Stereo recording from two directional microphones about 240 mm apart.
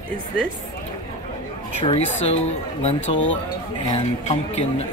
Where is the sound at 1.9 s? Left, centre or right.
Left.